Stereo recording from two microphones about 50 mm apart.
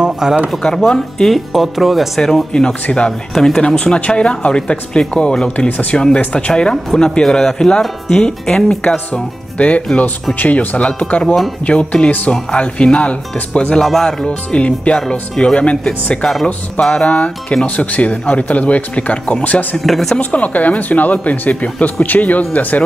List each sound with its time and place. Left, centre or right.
0.0 s a sound: centre
0.7 s speech: centre
2.2 s speech: centre
3.1 s speech: centre
3.6 s a man's voice: centre
5.7 s a man's voice: left
5.9 s speech: centre
9.6 s a man's voice: left
11.2 s speech: centre
11.6 s a man's voice: left
13.7 s speech: centre
14.2 s a man's voice: left
19.8 s speech: centre
20.2 s speech: left